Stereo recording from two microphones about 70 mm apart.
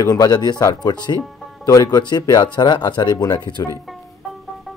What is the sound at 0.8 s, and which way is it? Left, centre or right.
Speech, left.